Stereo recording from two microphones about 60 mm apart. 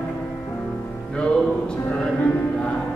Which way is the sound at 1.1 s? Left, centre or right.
Centre.